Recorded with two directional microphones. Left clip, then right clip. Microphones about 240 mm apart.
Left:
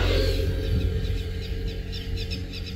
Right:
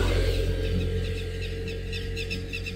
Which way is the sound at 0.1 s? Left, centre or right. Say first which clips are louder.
Left 2 dB; left.